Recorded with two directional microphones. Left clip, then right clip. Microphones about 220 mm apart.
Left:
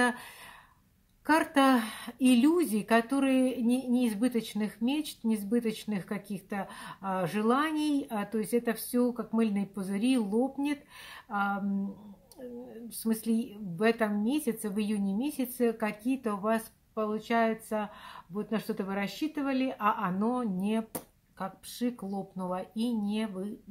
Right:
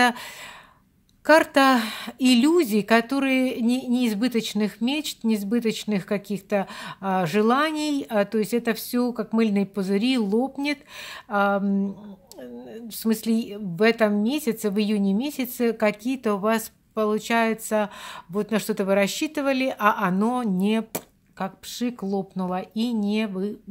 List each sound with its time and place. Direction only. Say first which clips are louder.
0.0 s a woman's voice: right 8 dB; 40° right (ahead or behind)
13.0 s a woman's voice: right 7 dB; 40° right (ahead or behind)